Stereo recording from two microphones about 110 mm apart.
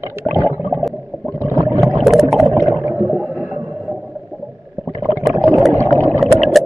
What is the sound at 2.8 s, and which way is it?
Whale vocalization, 25° right (ahead or behind).